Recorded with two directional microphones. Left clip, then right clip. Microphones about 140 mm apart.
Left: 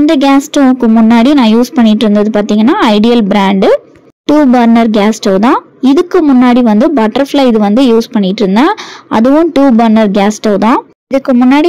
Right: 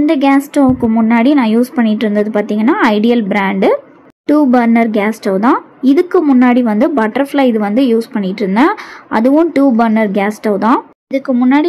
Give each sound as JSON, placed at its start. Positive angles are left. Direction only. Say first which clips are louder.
{"t": 0.0, "sound": "a woman's voice", "louder": "left 4 dB", "side_deg": 30}